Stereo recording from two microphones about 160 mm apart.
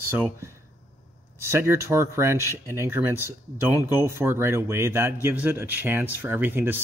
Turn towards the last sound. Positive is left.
turn(degrees=-15)  # may be behind; listen again after turning